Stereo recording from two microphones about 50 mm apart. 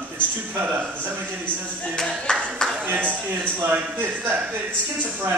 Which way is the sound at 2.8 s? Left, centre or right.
Right.